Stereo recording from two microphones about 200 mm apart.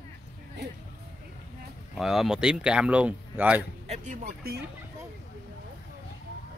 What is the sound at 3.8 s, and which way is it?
Speech, 35° right (ahead or behind).